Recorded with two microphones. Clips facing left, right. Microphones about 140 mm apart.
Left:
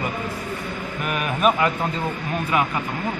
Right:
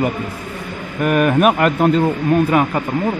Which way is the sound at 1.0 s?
50° right (ahead or behind).